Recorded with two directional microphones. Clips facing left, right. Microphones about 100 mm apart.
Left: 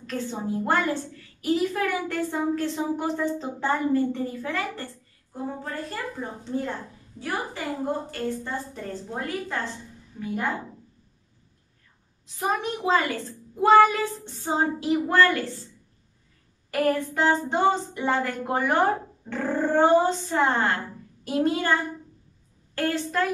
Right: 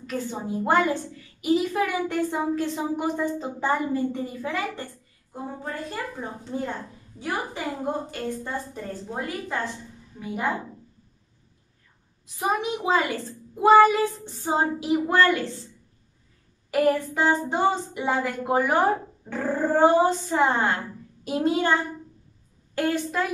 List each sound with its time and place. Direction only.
0.0 s a woman's voice: 10° right (ahead or behind)
7.2 s a woman's voice: 15° right (ahead or behind)
12.4 s a woman's voice: 10° right (ahead or behind)
16.7 s a woman's voice: 5° right (ahead or behind)
21.2 s a child's voice: 15° right (ahead or behind)
22.8 s a woman's voice: 10° right (ahead or behind)